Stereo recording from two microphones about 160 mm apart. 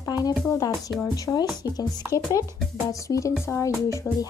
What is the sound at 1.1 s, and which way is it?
Speech, 25° left (ahead or behind).